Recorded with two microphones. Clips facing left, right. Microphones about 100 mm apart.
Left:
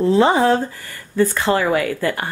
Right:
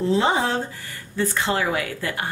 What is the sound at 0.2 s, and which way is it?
Speech, 50° left (ahead or behind).